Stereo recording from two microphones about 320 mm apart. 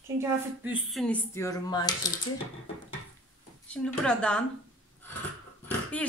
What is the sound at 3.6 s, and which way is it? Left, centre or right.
Speech, centre.